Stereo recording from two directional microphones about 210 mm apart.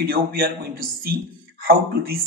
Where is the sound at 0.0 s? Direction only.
45° right (ahead or behind).